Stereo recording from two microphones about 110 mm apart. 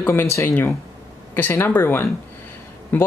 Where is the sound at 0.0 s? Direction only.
20° left (ahead or behind).